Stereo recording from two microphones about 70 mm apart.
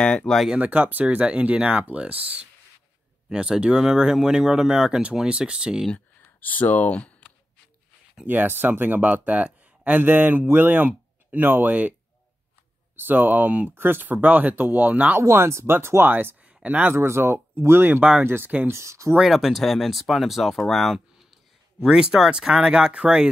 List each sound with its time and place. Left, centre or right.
0.0 s speech: centre
0.5 s speech: right
3.3 s speech: centre
5.9 s speech: left
8.3 s speech: right
12.9 s speech: right
13.7 s speech: right
15.1 s speech: right
16.9 s speech: right
19.2 s speech: centre
21.7 s speech: centre